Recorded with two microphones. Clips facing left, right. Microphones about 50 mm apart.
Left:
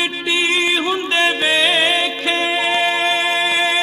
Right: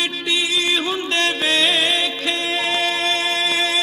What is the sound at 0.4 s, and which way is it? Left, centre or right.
Music, left.